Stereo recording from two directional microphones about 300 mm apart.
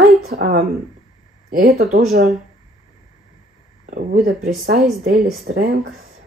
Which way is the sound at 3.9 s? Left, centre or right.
Right.